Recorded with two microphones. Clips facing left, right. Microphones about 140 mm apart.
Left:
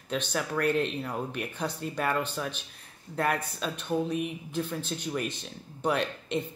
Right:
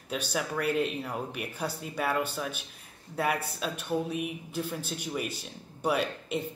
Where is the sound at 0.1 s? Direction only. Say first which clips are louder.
Left 1 dB; 5° right (ahead or behind).